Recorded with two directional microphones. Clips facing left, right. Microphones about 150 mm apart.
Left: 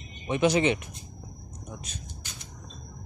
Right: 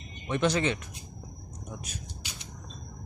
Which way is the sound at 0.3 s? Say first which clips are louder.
Left 4 dB; 15° left (ahead or behind).